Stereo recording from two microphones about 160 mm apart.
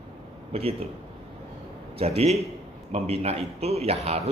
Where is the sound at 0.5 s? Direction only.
35° right (ahead or behind).